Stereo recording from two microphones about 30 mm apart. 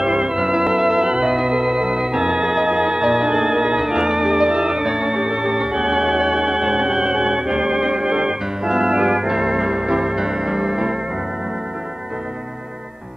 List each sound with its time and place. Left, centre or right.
0.0 s music: centre
0.7 s organ: centre
2.7 s music: right
7.7 s organ: centre